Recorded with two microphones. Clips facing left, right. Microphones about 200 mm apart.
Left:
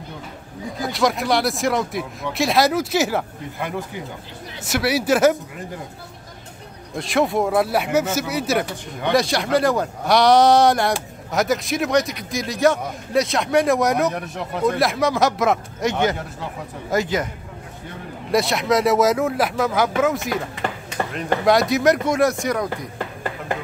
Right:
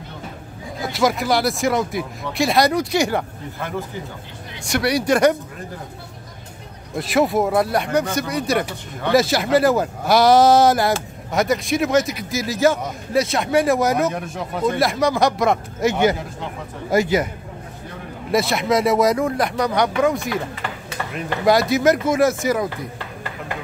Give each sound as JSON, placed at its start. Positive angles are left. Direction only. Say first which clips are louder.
{"t": 0.9, "sound": "a man's voice", "louder": "right 1 dB", "side_deg": 0}
{"t": 4.6, "sound": "a man's voice", "louder": "right 1 dB", "side_deg": 5}
{"t": 7.0, "sound": "a man's voice", "louder": "right 2 dB", "side_deg": -5}
{"t": 18.3, "sound": "a man's voice", "louder": "even", "side_deg": 0}
{"t": 21.0, "sound": "chop", "louder": "left 5 dB", "side_deg": 40}
{"t": 21.5, "sound": "a man's voice", "louder": "right 1 dB", "side_deg": 0}